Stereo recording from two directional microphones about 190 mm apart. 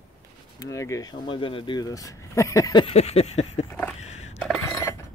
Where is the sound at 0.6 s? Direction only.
15° left (ahead or behind).